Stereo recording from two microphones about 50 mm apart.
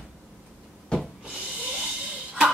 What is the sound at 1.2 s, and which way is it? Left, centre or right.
Snort, centre.